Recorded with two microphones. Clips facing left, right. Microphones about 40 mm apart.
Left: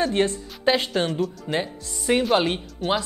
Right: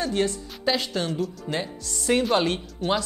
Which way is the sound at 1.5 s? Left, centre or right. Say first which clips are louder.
Left 3 dB; centre.